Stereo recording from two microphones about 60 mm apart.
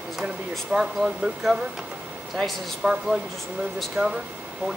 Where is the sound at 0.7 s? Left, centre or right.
Centre.